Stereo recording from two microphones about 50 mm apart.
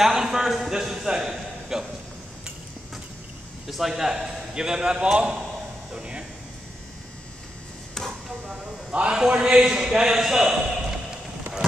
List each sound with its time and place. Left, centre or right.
0.0 s a man's voice: centre
1.3 s a sound: centre
3.6 s a man's voice: centre
8.0 s chop: centre
8.5 s a sound: centre
9.3 s a man's voice: centre